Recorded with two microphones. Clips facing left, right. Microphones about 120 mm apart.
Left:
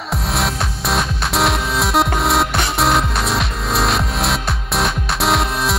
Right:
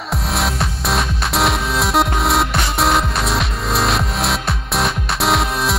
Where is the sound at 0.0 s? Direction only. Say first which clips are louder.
Even; centre (ahead or behind).